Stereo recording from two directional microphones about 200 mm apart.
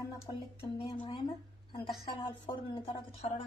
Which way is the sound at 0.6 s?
25° left (ahead or behind).